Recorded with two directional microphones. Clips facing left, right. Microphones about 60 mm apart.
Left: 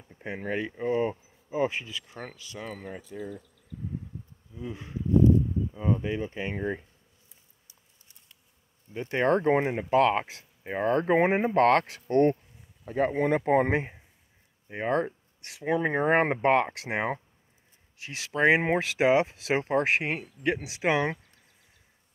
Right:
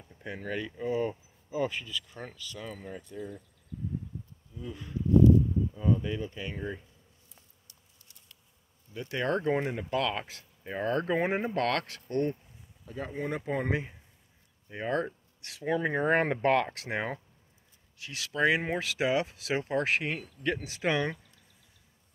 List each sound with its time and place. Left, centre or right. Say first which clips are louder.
0.1 s speech: left 4 dB; left
2.5 s speech: left 5 dB; left
3.1 s speech: left 3 dB; centre
4.6 s speech: left 1 dB; left
8.9 s speech: left 6 dB; left
20.5 s speech: left 3 dB; centre